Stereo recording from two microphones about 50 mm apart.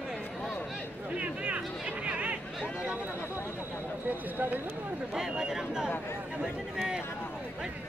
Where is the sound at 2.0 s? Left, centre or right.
Right.